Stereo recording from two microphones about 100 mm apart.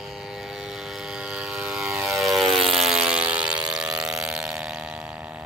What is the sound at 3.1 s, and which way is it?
Siren, 10° right (ahead or behind).